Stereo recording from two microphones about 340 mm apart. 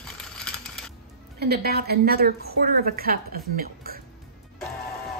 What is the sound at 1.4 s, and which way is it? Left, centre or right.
A woman's voice, right.